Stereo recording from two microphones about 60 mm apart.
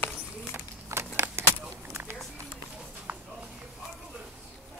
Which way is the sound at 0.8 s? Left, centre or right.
Right.